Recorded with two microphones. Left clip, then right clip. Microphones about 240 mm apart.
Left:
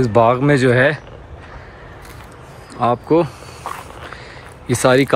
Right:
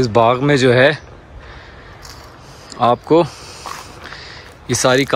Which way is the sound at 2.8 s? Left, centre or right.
Centre.